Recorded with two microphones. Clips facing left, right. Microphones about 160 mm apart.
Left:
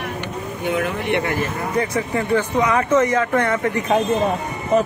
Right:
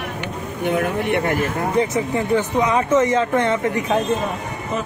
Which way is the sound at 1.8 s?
20° right (ahead or behind).